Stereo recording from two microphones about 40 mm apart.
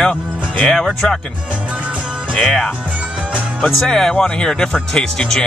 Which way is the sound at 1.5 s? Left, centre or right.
Right.